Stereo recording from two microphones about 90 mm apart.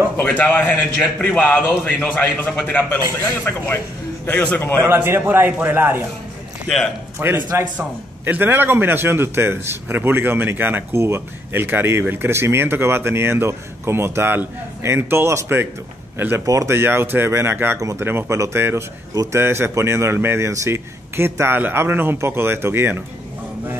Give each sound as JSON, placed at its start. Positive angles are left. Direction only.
{"t": 0.2, "sound": "a man's voice", "side_deg": 20}
{"t": 4.8, "sound": "a man's voice", "side_deg": -25}
{"t": 7.2, "sound": "a man's voice", "side_deg": -25}
{"t": 16.4, "sound": "a man's voice", "side_deg": -35}
{"t": 17.7, "sound": "a man's voice", "side_deg": -40}